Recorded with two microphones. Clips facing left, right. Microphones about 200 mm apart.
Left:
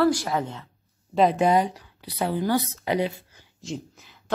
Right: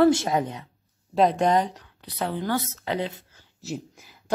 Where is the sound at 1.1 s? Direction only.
5° left (ahead or behind).